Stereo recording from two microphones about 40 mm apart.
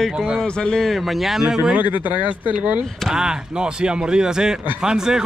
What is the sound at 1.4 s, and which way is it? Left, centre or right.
Speech, centre.